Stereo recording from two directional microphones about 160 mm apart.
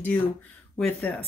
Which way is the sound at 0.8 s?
5° left (ahead or behind).